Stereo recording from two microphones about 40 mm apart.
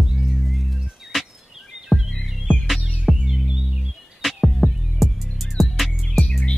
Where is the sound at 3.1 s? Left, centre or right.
Centre.